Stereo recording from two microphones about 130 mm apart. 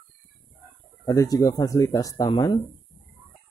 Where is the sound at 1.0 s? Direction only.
25° left (ahead or behind).